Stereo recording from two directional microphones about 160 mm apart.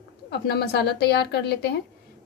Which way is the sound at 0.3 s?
90° left.